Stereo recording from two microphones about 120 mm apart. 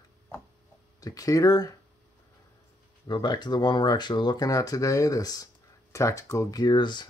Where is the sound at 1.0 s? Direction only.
30° left (ahead or behind).